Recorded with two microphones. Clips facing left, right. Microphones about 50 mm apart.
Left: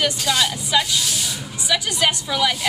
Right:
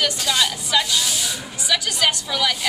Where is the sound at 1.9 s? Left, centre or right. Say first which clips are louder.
Left 1 dB; left.